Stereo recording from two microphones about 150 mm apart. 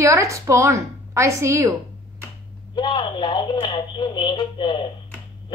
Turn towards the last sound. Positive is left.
turn(degrees=35)  # may be behind; listen again after turning